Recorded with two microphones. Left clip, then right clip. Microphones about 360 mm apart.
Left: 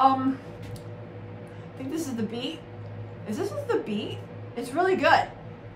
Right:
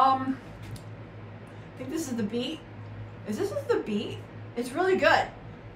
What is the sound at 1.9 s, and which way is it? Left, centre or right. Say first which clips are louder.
A woman's voice: even; centre.